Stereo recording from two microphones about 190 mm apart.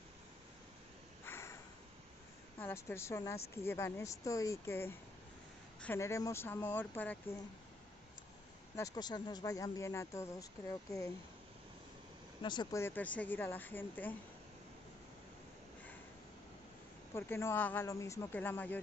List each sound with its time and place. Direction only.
1.2 s a sound: 15° left (ahead or behind)
2.6 s a woman's voice: 15° left (ahead or behind)
8.7 s speech: 20° left (ahead or behind)
12.4 s speech: 25° left (ahead or behind)
12.8 s speech: 10° left (ahead or behind)
17.1 s speech: 15° left (ahead or behind)